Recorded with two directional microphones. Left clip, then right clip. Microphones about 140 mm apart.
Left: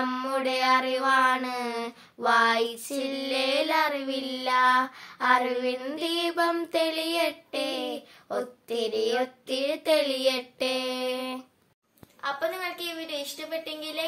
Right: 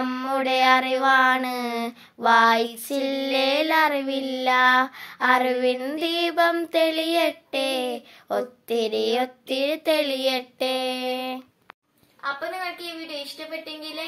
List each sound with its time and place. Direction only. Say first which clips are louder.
0.0 s a sound: right 1 dB; 20° right (ahead or behind)
0.5 s child singing: right 5 dB; 35° right (ahead or behind); by 11.4 s 15° right (ahead or behind)
12.2 s a woman's voice: right 1 dB; centre (ahead or behind)